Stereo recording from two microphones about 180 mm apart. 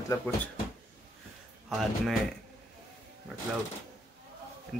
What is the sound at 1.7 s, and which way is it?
Speech, 5° right (ahead or behind).